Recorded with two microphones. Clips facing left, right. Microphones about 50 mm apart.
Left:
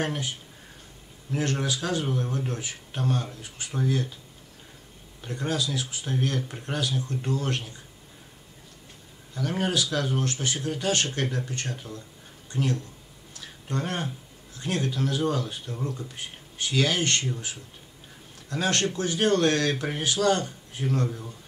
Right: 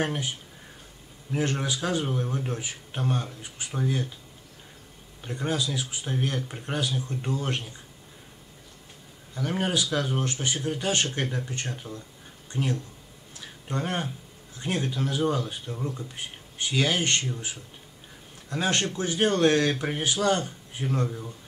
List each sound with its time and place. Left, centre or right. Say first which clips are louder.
0.0 s speech: right 1 dB; centre
1.3 s speech: even; centre
5.2 s speech: even; centre
9.3 s speech: even; centre
13.4 s a sound: even; centre
14.6 s speech: left 1 dB; centre
18.5 s speech: left 1 dB; centre